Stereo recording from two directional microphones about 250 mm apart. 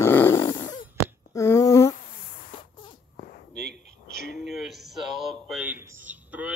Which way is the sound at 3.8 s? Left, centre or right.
Right.